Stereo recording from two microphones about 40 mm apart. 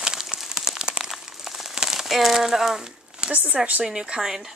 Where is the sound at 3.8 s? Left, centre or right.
Centre.